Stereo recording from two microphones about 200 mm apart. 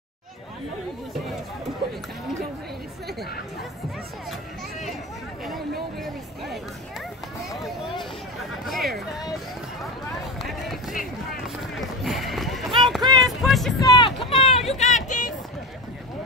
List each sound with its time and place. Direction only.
8.6 s chatter: centre (ahead or behind)
10.4 s run: centre (ahead or behind)
13.0 s a sound: 20° right (ahead or behind)
13.3 s music: centre (ahead or behind)
13.7 s vehicle: 20° left (ahead or behind)
14.2 s a sound: 30° left (ahead or behind)
14.8 s vehicle: 35° left (ahead or behind)